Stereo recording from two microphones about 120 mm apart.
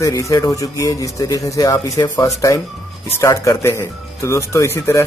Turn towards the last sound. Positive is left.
turn(degrees=20)  # may be behind; listen again after turning